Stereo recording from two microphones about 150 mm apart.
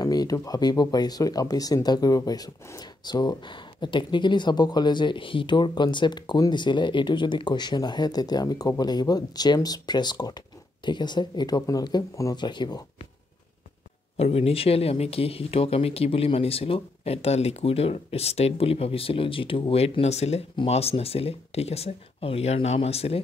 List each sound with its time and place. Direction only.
0.0 s speech: 25° left (ahead or behind)
14.1 s speech: 40° left (ahead or behind)